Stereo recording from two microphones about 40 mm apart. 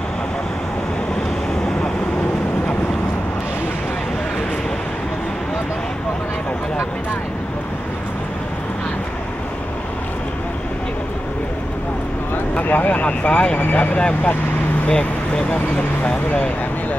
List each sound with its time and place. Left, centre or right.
12.5 s speech: left
13.6 s speech: left
13.9 s speech: left